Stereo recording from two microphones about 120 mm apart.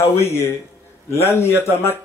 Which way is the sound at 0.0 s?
20° left (ahead or behind).